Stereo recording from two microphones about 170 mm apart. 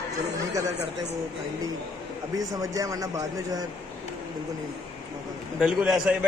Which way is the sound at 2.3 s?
20° right (ahead or behind).